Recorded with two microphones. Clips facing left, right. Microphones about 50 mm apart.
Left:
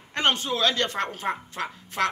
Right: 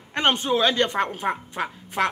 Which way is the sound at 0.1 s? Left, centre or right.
Centre.